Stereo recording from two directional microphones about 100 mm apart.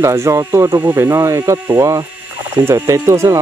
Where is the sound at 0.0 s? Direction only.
30° right (ahead or behind).